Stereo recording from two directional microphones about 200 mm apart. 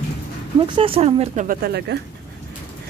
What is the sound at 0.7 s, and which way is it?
Speech, 30° right (ahead or behind).